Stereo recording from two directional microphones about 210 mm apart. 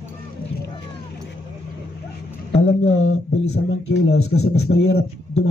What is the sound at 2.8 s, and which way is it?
Speech, 65° left (ahead or behind).